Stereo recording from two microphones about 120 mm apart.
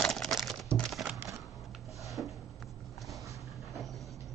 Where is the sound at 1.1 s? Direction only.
20° right (ahead or behind).